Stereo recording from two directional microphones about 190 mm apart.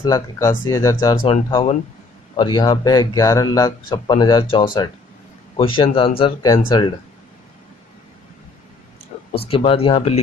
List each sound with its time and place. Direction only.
0.0 s speech: 15° left (ahead or behind)
9.3 s speech: 30° left (ahead or behind)